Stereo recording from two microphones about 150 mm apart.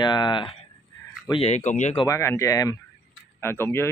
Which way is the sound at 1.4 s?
50° left (ahead or behind).